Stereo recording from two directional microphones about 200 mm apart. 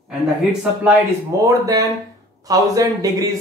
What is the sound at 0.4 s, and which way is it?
Speech, centre (ahead or behind).